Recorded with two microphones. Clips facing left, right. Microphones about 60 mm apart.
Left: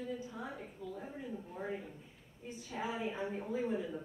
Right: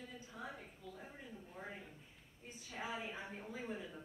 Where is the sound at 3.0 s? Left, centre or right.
Centre.